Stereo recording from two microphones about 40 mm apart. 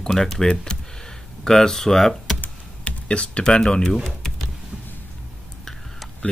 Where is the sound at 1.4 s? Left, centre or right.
Centre.